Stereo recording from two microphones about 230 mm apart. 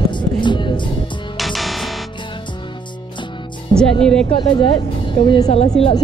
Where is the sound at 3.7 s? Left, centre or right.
Centre.